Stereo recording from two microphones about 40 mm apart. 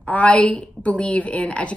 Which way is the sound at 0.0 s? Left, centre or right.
Left.